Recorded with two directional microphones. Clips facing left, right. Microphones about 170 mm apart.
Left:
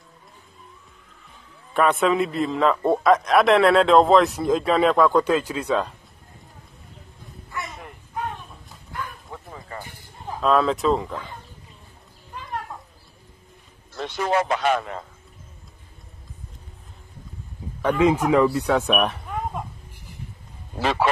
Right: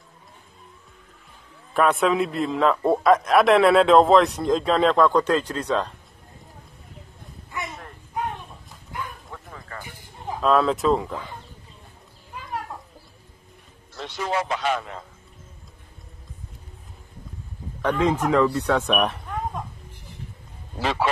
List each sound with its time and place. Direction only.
1.7 s a man's voice: centre (ahead or behind)
9.3 s bow-wow: 15° left (ahead or behind)
10.4 s a man's voice: centre (ahead or behind)
13.9 s speech: 55° left (ahead or behind)
17.8 s speech: 10° left (ahead or behind)
20.8 s speech: 55° left (ahead or behind)